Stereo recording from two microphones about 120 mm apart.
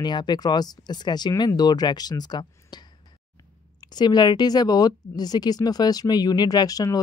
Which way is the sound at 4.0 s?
35° left (ahead or behind).